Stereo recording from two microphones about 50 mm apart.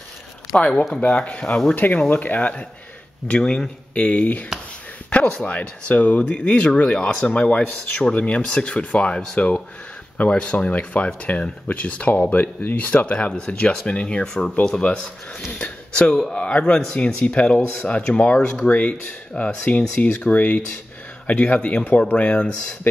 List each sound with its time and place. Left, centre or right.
0.6 s speech: left
2.0 s speech: left
3.3 s speech: centre
3.9 s speech: left